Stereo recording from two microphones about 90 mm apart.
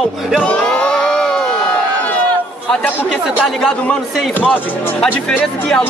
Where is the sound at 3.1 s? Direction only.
5° left (ahead or behind).